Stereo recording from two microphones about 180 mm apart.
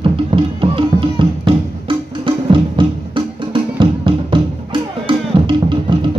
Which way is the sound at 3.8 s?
30° right (ahead or behind).